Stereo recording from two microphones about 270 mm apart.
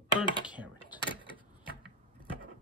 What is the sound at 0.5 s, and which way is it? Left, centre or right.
Typing, centre.